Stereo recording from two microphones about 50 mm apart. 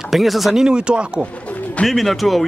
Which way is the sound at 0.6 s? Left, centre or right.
Centre.